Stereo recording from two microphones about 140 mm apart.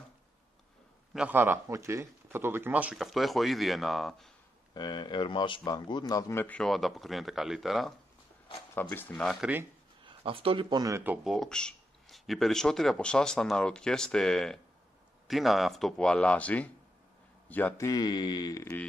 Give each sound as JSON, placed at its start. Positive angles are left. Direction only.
{"t": 1.1, "sound": "speech", "side_deg": -10}
{"t": 3.0, "sound": "speech", "side_deg": 0}
{"t": 4.7, "sound": "speech", "side_deg": 30}
{"t": 6.4, "sound": "speech", "side_deg": 5}
{"t": 8.9, "sound": "speech", "side_deg": 15}
{"t": 9.2, "sound": "speech", "side_deg": 5}
{"t": 10.0, "sound": "speech", "side_deg": -40}
{"t": 11.2, "sound": "speech", "side_deg": 5}
{"t": 17.7, "sound": "speech", "side_deg": 25}